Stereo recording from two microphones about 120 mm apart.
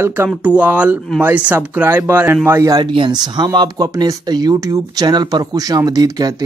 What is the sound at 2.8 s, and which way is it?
Speech, 40° right (ahead or behind).